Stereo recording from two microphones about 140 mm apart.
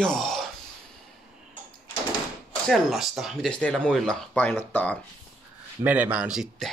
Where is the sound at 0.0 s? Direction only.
5° left (ahead or behind).